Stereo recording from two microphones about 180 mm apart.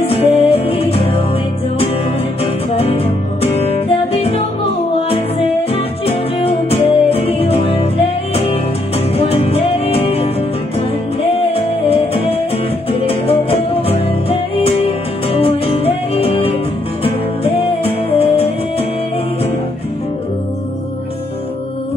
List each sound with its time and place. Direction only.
0.0 s music: 35° left (ahead or behind)
2.7 s music: 35° left (ahead or behind)
5.7 s music: 35° left (ahead or behind)